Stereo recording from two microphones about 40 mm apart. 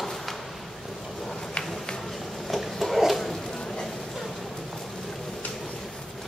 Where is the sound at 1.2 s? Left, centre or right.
Centre.